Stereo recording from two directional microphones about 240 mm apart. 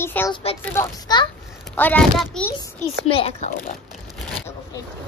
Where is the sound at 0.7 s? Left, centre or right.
Centre.